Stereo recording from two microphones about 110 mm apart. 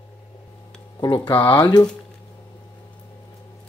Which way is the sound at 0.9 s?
40° left (ahead or behind).